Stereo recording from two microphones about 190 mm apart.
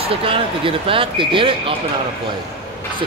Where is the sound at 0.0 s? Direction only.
30° right (ahead or behind).